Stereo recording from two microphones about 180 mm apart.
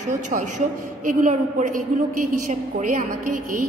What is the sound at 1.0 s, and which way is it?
A woman's voice, 45° right (ahead or behind).